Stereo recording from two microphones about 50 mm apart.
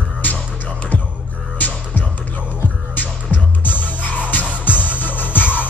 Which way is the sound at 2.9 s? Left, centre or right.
Left.